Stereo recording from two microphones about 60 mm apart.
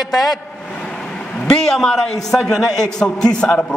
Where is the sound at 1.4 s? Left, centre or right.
Centre.